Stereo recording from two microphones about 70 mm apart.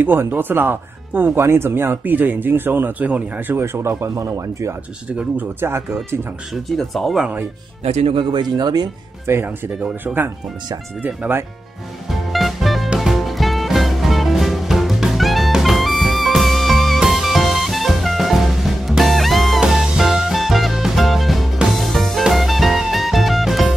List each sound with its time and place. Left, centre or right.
0.0 s speech: right
5.4 s speech: right
6.5 s speech: centre
8.4 s speech: right
9.2 s speech: right
12.1 s music: centre